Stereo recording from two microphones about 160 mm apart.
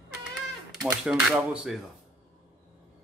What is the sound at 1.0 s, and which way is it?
Speech, 5° right (ahead or behind).